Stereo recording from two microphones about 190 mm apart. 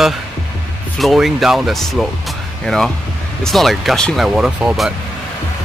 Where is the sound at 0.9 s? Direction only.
Centre (ahead or behind).